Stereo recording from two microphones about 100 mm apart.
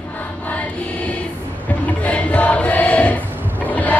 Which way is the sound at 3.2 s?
20° right (ahead or behind).